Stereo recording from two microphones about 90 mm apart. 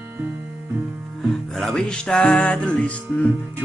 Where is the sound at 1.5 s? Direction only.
5° left (ahead or behind).